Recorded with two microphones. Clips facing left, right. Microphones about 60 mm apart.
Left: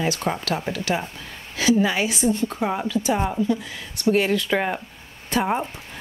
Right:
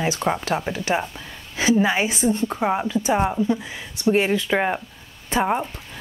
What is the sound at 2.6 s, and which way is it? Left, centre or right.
A woman's voice, centre.